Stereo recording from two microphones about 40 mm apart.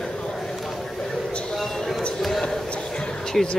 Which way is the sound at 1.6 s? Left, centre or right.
Centre.